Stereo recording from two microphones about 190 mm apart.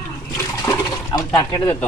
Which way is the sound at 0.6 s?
20° left (ahead or behind).